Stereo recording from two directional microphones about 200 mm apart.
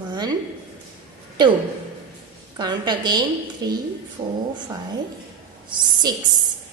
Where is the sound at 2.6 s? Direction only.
20° right (ahead or behind).